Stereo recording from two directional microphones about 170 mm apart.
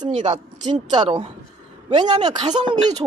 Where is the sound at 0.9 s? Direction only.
30° right (ahead or behind).